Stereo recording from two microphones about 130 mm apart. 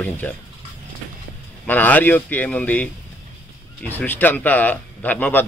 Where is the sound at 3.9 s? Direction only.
15° left (ahead or behind).